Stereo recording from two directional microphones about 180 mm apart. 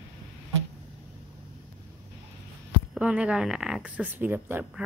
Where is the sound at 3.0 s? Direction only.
5° right (ahead or behind).